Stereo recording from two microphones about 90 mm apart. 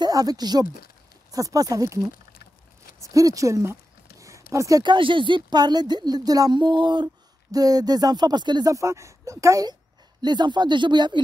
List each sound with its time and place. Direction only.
0.0 s speech: 45° right (ahead or behind)
3.0 s speech: 40° right (ahead or behind)
4.2 s a sound: 35° right (ahead or behind)
4.8 s speech: 65° right (ahead or behind); by 6.6 s 45° right (ahead or behind)
6.6 s speech: 60° right (ahead or behind)
7.5 s speech: 45° right (ahead or behind)
8.7 s speech: 35° right (ahead or behind)
10.2 s speech: 55° right (ahead or behind)